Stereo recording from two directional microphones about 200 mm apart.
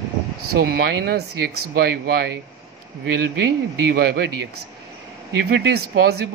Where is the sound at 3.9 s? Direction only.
55° right (ahead or behind).